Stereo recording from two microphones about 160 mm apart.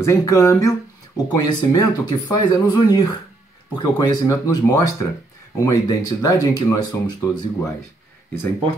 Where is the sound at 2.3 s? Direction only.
25° left (ahead or behind).